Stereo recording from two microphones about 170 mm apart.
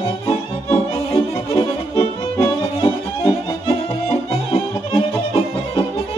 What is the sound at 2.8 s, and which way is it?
Music, 35° left (ahead or behind).